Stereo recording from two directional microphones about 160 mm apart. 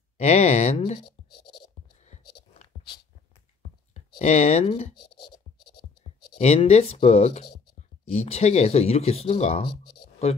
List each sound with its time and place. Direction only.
0.2 s speech: 45° left (ahead or behind)
2.0 s whispering: 45° left (ahead or behind)
3.9 s speech: 45° left (ahead or behind)
6.3 s speech: 40° left (ahead or behind)